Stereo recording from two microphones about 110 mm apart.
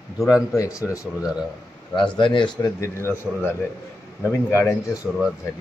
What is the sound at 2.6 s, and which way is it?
Speech, 25° left (ahead or behind).